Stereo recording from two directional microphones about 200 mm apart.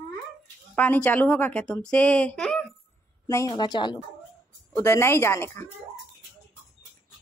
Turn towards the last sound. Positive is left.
turn(degrees=15)  # may be behind; listen again after turning